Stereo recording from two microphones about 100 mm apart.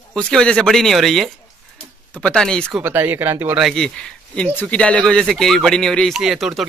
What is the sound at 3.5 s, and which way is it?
Speech, centre (ahead or behind).